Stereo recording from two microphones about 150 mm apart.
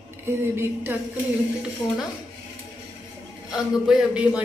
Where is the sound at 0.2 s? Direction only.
15° right (ahead or behind).